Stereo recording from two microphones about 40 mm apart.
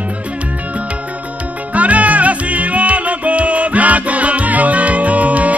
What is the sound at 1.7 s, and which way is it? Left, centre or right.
Music, right.